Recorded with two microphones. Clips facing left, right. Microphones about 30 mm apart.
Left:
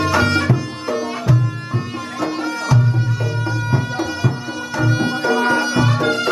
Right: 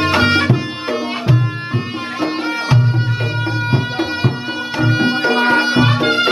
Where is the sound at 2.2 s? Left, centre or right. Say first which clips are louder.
Right 2 dB; right.